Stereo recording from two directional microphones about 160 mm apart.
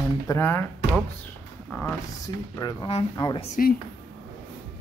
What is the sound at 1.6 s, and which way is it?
Speech, 10° left (ahead or behind).